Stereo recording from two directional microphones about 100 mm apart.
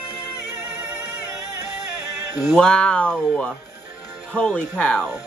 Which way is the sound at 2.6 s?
10° left (ahead or behind).